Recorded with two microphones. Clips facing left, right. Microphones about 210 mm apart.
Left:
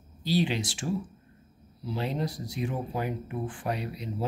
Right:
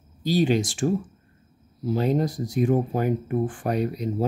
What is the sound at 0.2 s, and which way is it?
Speech, 45° right (ahead or behind).